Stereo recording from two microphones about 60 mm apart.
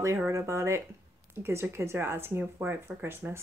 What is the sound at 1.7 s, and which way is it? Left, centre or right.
Speech, right.